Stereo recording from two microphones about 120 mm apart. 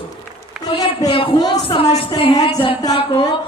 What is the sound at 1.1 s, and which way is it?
A man's voice, 50° left (ahead or behind).